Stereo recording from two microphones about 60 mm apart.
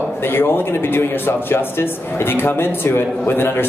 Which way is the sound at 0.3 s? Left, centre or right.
Left.